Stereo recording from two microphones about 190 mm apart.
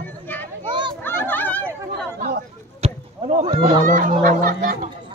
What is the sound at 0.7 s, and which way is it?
Children playing, 25° right (ahead or behind).